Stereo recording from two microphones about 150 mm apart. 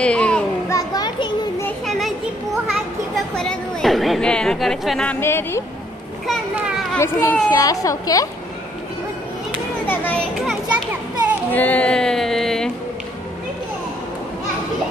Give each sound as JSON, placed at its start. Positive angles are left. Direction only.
{"t": 0.0, "sound": "children playing", "side_deg": 5}
{"t": 0.7, "sound": "children playing", "side_deg": 25}
{"t": 1.9, "sound": "children playing", "side_deg": 0}
{"t": 3.3, "sound": "a woman's voice", "side_deg": 0}
{"t": 5.2, "sound": "a woman's voice", "side_deg": 15}
{"t": 7.0, "sound": "a woman's voice", "side_deg": 20}
{"t": 9.8, "sound": "children playing", "side_deg": 10}
{"t": 11.5, "sound": "music", "side_deg": 10}